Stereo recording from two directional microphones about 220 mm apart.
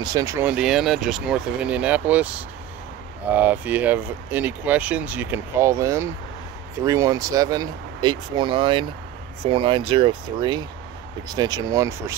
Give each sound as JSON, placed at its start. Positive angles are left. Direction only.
{"t": 0.0, "sound": "speech", "side_deg": -15}